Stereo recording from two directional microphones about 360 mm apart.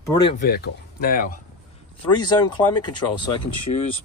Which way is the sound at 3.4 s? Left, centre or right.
Left.